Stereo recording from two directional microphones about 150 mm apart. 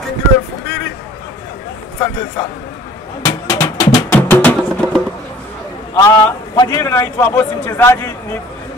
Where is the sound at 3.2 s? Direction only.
20° left (ahead or behind).